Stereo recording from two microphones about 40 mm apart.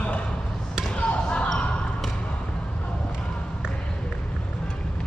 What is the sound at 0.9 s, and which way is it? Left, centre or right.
Basketball bounce, left.